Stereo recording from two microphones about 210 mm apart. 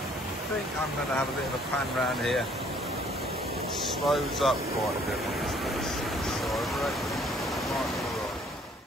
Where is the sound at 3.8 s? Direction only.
Centre (ahead or behind).